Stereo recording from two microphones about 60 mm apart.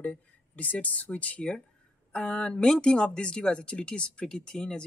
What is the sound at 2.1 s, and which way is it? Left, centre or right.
Speech, centre.